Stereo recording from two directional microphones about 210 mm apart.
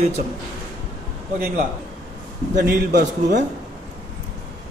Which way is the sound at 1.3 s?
45° right (ahead or behind).